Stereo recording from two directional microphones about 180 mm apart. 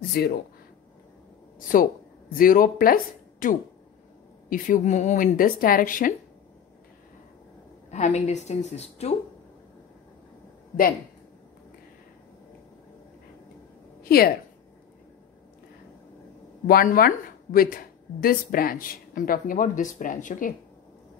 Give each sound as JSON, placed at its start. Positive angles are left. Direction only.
{"t": 0.2, "sound": "speech", "side_deg": 60}
{"t": 1.7, "sound": "speech", "side_deg": 50}
{"t": 7.9, "sound": "a woman's voice", "side_deg": 40}
{"t": 14.0, "sound": "a woman's voice", "side_deg": 55}
{"t": 16.6, "sound": "speech", "side_deg": 55}